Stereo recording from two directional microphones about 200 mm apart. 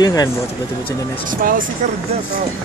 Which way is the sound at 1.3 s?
45° right (ahead or behind).